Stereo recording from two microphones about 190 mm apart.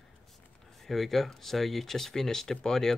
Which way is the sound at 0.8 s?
Centre (ahead or behind).